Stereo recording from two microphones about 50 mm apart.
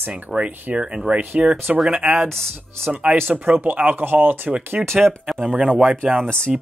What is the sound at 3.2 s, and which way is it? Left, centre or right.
Speech, right.